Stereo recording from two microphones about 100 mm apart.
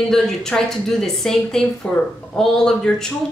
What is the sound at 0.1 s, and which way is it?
A woman's voice, 5° left (ahead or behind).